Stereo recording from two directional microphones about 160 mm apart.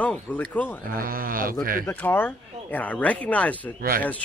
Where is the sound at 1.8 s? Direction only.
10° left (ahead or behind).